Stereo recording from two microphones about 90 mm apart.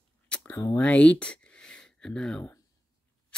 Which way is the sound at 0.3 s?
20° left (ahead or behind).